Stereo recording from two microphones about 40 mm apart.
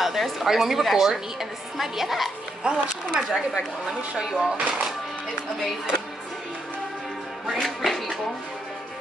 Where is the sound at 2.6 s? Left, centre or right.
Right.